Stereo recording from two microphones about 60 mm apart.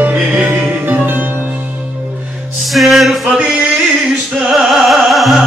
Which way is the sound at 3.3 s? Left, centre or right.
Centre.